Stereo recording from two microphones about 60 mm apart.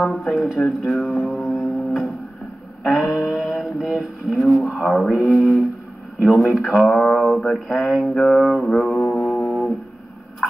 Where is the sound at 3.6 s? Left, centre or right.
Centre.